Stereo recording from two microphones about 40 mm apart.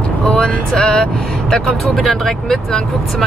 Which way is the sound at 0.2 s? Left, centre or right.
Centre.